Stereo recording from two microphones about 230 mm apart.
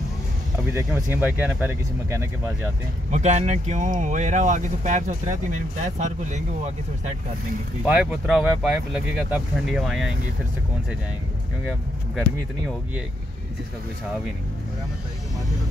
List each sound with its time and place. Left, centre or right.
0.7 s speech: centre
3.1 s speech: right
7.8 s speech: centre